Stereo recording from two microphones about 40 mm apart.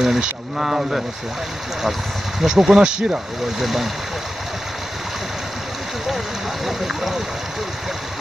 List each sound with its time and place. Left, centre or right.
0.0 s speech: centre
2.4 s speech: centre
3.5 s speech: centre
6.0 s speech: centre